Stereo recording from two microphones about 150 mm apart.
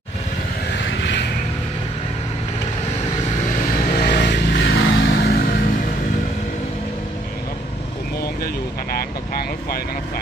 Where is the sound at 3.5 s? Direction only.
65° left (ahead or behind); by 4.5 s 90° left.